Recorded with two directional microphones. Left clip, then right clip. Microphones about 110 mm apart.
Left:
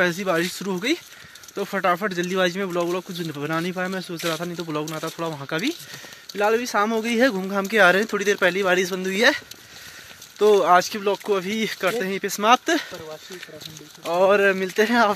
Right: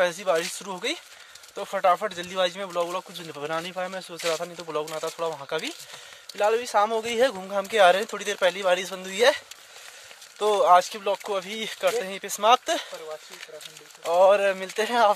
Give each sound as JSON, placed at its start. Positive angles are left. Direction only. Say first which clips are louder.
{"t": 0.0, "sound": "speech", "louder": "left 2 dB", "side_deg": -15}
{"t": 3.1, "sound": "speech", "louder": "left 4 dB", "side_deg": -20}
{"t": 4.9, "sound": "speech", "louder": "left 1 dB", "side_deg": 0}
{"t": 5.5, "sound": "speech", "louder": "left 4 dB", "side_deg": -10}
{"t": 10.4, "sound": "speech", "louder": "left 2 dB", "side_deg": -15}
{"t": 14.0, "sound": "speech", "louder": "left 1 dB", "side_deg": -20}